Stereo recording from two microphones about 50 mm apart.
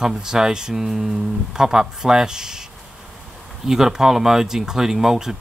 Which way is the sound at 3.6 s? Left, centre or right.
Centre.